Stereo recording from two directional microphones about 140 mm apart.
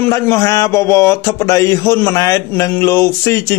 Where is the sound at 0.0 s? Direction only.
20° left (ahead or behind).